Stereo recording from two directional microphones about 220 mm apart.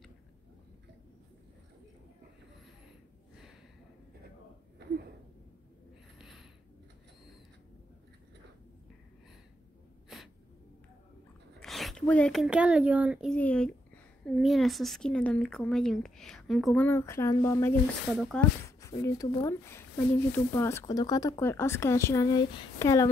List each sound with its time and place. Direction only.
6.1 s a sound: centre (ahead or behind)
10.0 s gasp: centre (ahead or behind)
11.6 s a child's voice: centre (ahead or behind)
18.1 s speech: centre (ahead or behind)
18.8 s speech: 15° left (ahead or behind)